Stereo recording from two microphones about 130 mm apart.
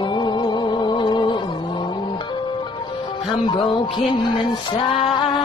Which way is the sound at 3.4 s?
40° left (ahead or behind).